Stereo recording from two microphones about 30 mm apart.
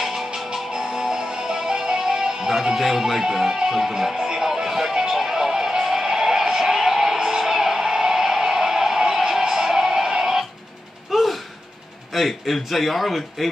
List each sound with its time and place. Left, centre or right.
0.0 s music: centre
1.7 s speech: right
4.4 s music: centre
4.9 s music: right
7.2 s a sound: centre
9.4 s music: centre
11.1 s gasp: centre
12.1 s a man's voice: centre